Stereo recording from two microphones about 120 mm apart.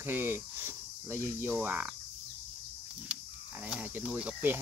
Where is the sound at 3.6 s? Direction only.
10° right (ahead or behind).